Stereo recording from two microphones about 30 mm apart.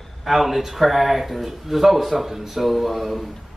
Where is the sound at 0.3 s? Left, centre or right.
Centre.